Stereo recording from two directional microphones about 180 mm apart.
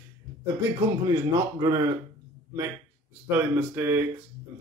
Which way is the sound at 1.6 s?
20° right (ahead or behind).